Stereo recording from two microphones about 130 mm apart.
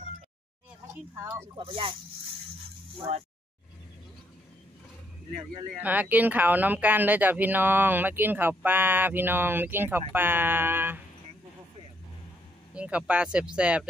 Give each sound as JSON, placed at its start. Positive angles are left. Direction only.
{"t": 0.9, "sound": "speech", "side_deg": -20}
{"t": 1.6, "sound": "speech", "side_deg": -45}
{"t": 5.8, "sound": "speech", "side_deg": -10}
{"t": 12.7, "sound": "speech", "side_deg": -10}